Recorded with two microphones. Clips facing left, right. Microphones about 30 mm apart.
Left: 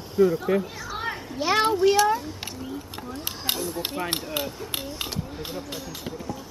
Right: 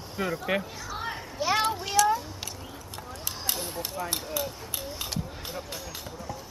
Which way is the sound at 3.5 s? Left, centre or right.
Left.